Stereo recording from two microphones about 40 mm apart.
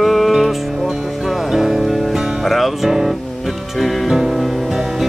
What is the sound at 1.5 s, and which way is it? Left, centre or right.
Music, centre.